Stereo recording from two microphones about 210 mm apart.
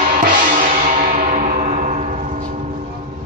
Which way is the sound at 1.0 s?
40° right (ahead or behind).